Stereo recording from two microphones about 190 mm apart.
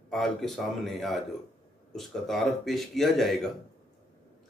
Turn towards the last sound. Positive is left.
turn(degrees=0)  # may be behind; listen again after turning